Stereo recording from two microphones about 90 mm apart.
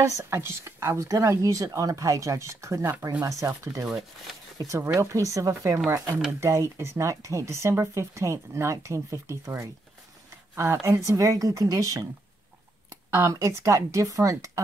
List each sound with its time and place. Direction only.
0.0 s speech: 30° right (ahead or behind)
3.2 s speech: 40° right (ahead or behind)
13.1 s speech: 35° right (ahead or behind)